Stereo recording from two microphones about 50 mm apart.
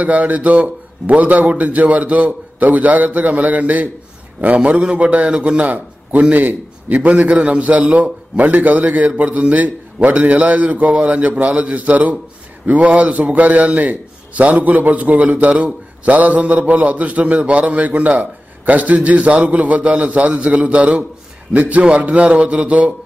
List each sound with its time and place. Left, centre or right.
0.0 s a man's voice: right